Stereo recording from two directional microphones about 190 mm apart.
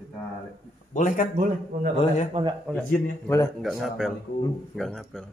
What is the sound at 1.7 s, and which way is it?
Speech, 55° right (ahead or behind).